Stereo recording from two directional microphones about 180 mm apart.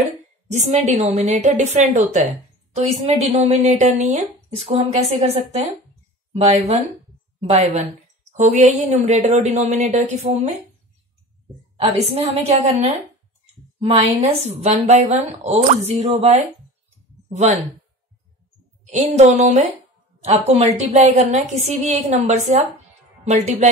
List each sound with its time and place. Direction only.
0.5 s a woman's voice: 40° right (ahead or behind)
12.4 s a woman's voice: 35° right (ahead or behind)
14.0 s a woman's voice: 40° right (ahead or behind)
18.9 s a woman's voice: 40° right (ahead or behind)